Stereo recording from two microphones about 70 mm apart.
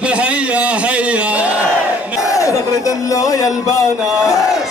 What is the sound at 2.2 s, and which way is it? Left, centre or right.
Crowd, left.